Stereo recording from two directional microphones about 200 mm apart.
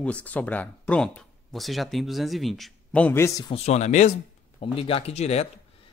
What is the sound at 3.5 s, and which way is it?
Speech, 35° left (ahead or behind).